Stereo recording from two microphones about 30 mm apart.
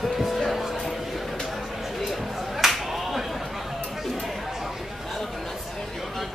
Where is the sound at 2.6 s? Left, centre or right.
Centre.